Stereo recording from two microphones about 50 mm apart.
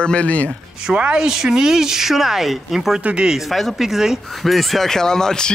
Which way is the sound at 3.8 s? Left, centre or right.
Centre.